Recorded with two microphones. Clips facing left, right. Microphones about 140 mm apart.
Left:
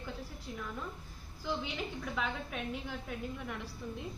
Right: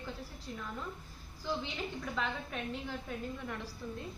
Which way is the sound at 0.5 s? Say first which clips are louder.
Even; 10° left (ahead or behind).